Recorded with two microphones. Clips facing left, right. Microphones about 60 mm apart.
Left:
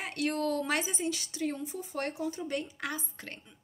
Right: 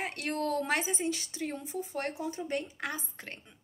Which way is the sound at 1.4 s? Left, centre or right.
Right.